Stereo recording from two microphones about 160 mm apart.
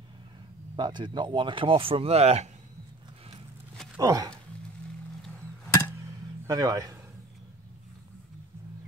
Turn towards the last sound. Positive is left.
turn(degrees=-20)  # may be behind; listen again after turning